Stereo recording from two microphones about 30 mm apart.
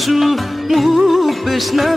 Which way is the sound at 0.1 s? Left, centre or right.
Centre.